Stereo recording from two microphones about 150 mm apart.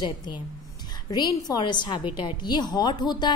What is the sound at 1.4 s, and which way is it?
Speech, 30° left (ahead or behind).